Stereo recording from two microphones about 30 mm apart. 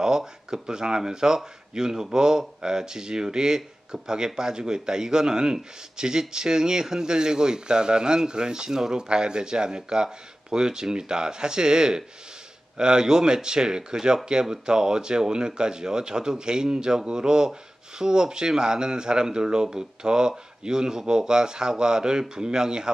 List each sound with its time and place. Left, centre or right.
0.0 s speech: right